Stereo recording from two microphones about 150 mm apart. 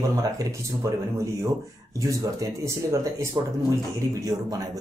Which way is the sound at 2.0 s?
20° right (ahead or behind).